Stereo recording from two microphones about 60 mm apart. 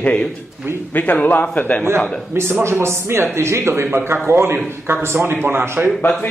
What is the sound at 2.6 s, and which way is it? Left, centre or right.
A man's voice, right.